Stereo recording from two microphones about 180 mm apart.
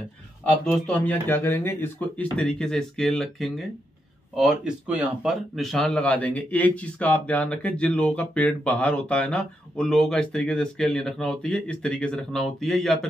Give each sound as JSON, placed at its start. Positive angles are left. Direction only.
{"t": 0.7, "sound": "speech", "side_deg": 10}